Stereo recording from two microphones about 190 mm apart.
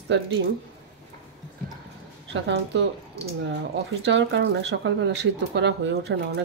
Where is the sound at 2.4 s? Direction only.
65° right (ahead or behind).